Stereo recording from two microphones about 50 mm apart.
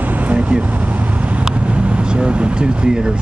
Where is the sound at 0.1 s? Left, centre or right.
Right.